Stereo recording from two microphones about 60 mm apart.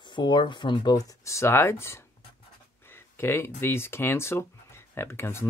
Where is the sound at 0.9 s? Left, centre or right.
Left.